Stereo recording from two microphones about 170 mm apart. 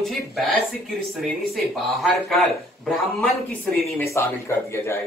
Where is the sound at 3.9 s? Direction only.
15° left (ahead or behind).